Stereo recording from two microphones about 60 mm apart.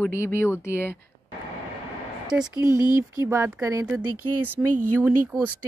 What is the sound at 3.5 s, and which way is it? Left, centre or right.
Speech, right.